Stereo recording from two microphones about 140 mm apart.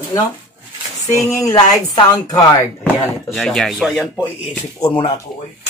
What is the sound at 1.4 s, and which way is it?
Speech, 25° left (ahead or behind).